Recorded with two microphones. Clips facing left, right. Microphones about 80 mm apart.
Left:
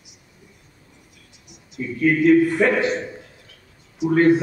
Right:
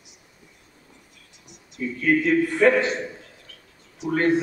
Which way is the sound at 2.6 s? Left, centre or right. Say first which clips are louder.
Right 1 dB; centre.